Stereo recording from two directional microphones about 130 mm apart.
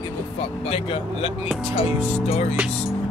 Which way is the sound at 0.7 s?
50° left (ahead or behind).